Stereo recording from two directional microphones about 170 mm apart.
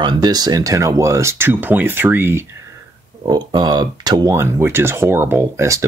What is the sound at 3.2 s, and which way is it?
Speech, 25° right (ahead or behind).